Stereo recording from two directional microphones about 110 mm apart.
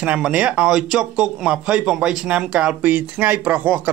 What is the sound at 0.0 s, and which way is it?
Speech, 10° right (ahead or behind).